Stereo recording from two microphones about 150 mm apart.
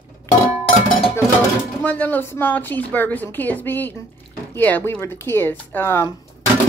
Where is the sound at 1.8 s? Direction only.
10° left (ahead or behind).